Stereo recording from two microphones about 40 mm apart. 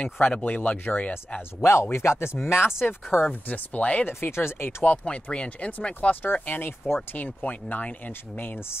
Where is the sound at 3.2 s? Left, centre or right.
Left.